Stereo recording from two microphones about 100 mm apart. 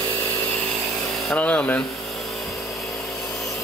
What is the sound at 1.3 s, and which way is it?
Speech, 10° left (ahead or behind).